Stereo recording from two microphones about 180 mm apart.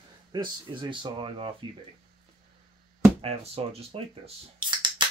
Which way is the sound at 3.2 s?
35° right (ahead or behind).